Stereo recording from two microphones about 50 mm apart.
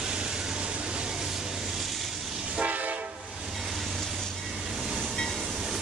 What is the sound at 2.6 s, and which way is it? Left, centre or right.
Train, right.